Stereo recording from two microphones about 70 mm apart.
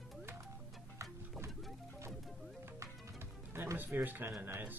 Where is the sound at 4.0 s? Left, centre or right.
Right.